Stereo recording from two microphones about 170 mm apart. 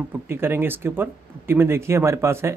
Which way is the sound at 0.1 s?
15° right (ahead or behind).